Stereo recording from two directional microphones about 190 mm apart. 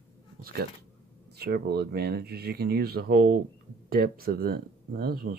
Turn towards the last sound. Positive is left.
turn(degrees=-55)  # may be behind; listen again after turning